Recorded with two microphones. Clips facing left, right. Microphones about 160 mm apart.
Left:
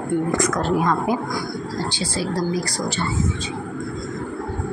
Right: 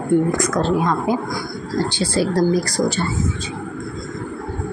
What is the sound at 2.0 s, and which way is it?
Speech, 55° right (ahead or behind).